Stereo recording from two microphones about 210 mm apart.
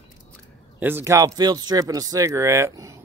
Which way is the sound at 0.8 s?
10° right (ahead or behind).